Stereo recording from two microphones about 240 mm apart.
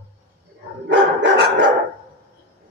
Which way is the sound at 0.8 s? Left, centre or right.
Right.